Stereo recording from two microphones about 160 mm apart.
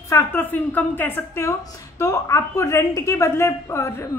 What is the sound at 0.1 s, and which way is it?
A woman's voice, 15° left (ahead or behind).